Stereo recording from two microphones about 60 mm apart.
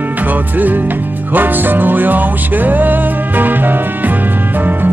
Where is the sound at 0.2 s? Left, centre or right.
Right.